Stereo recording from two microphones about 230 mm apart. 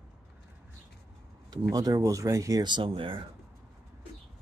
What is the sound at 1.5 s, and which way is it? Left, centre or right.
Speech, centre.